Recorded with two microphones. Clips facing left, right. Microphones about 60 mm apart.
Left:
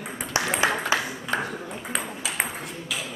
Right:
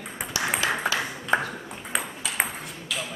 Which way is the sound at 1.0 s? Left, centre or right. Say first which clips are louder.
Right 3 dB; centre.